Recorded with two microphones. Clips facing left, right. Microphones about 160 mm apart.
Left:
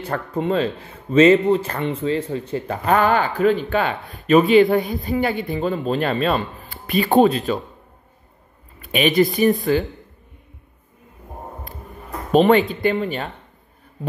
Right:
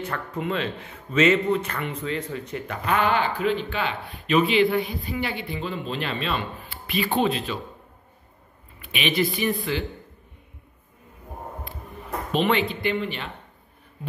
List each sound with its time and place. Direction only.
0.0 s speech: 30° left (ahead or behind)
8.8 s speech: 45° left (ahead or behind)
12.3 s speech: 45° left (ahead or behind)